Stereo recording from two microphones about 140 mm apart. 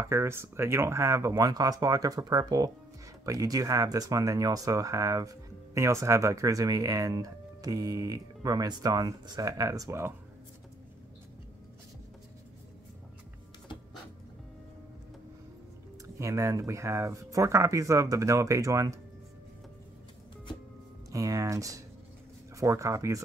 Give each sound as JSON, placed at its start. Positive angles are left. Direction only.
{"t": 0.0, "sound": "speech", "side_deg": -20}
{"t": 16.2, "sound": "speech", "side_deg": -20}
{"t": 21.1, "sound": "speech", "side_deg": -25}